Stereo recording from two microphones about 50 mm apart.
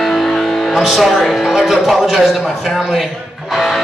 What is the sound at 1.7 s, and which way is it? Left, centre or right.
A man's voice, centre.